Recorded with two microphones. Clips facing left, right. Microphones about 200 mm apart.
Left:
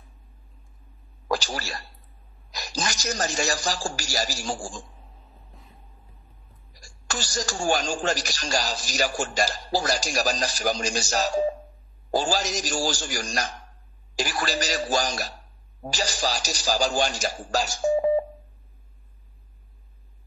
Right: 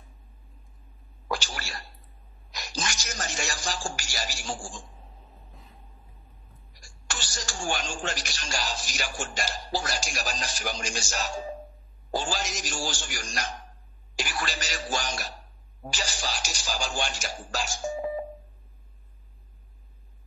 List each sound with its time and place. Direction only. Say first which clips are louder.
1.3 s a sound: left 6 dB; 40° left (ahead or behind)
2.5 s speech: left 4 dB; 35° left (ahead or behind)
6.8 s speech: left 6 dB; 40° left (ahead or behind)